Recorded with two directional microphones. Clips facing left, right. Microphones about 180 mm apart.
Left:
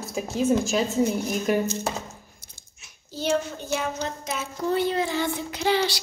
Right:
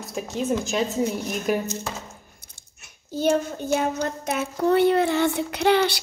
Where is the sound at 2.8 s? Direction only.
50° right (ahead or behind).